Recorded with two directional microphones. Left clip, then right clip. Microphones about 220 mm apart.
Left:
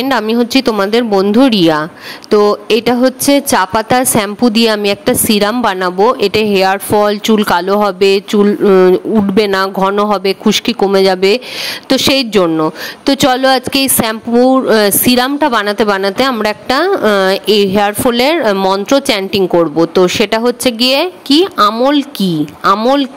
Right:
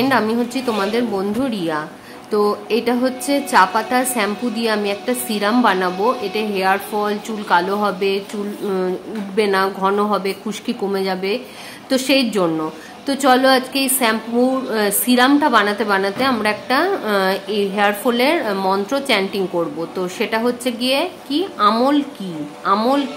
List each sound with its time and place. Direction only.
0.0 s speech: 40° left (ahead or behind)
22.8 s speech: 35° left (ahead or behind)